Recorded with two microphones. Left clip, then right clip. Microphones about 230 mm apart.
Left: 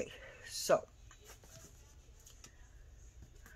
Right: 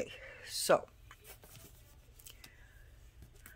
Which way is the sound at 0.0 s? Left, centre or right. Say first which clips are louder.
Right 2 dB; centre.